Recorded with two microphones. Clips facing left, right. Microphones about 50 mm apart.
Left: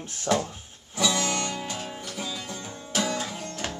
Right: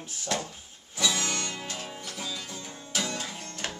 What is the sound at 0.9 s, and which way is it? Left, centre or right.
Music, centre.